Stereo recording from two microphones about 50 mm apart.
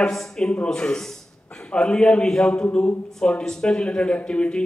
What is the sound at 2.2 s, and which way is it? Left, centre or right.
A man's voice, centre.